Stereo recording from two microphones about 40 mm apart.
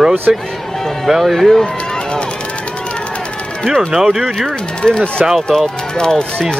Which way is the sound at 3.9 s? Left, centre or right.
Centre.